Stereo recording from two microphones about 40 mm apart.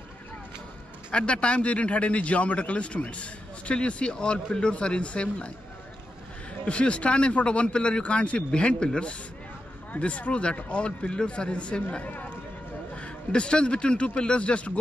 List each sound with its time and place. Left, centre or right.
1.1 s a man's voice: left
6.6 s a man's voice: left
9.9 s a man's voice: left
12.0 s speech: left
12.9 s speech: left